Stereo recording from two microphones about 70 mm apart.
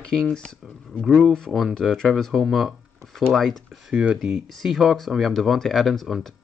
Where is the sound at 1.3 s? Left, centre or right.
Centre.